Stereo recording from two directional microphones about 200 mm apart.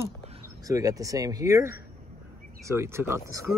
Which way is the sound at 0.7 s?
15° right (ahead or behind).